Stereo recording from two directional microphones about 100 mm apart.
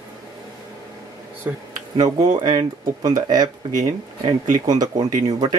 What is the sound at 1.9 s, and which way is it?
Speech, 40° right (ahead or behind).